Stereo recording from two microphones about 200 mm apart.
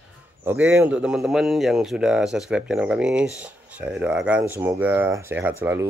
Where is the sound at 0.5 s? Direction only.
10° right (ahead or behind).